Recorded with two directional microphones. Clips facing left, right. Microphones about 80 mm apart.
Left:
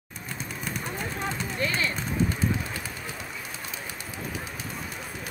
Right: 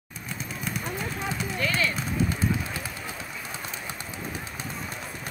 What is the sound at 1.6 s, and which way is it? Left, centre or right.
Clip-clop, left.